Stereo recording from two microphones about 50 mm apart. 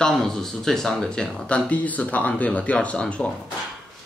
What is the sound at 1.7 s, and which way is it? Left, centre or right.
Speech, left.